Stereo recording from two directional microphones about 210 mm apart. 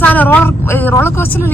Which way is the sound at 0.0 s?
10° left (ahead or behind).